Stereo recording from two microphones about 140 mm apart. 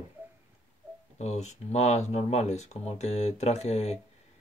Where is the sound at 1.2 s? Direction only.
55° left (ahead or behind).